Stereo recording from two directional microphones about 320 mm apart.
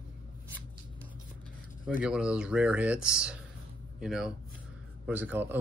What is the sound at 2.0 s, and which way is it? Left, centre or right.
Speech, centre.